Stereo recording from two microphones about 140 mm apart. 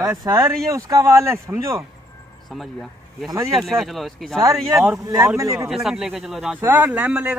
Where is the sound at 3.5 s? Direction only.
Centre (ahead or behind).